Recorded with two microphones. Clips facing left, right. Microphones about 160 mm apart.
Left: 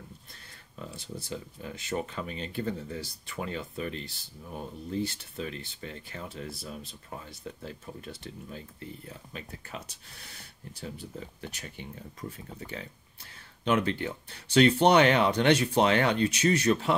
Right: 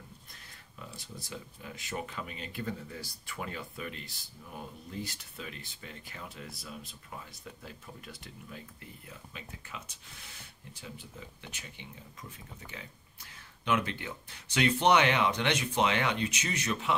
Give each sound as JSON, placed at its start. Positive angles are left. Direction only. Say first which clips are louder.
{"t": 0.3, "sound": "speech", "louder": "left 2 dB", "side_deg": 30}